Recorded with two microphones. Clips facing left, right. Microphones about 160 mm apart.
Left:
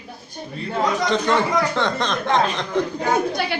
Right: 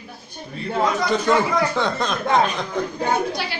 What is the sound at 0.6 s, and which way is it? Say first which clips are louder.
Speech: even; 5° right (ahead or behind).